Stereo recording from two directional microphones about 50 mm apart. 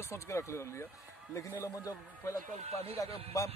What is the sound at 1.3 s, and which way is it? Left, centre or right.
Speech, left.